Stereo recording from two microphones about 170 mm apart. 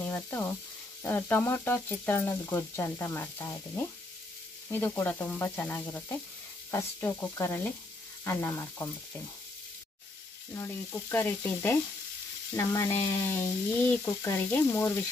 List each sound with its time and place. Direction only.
0.0 s speech: 10° left (ahead or behind)
10.5 s speech: 15° left (ahead or behind)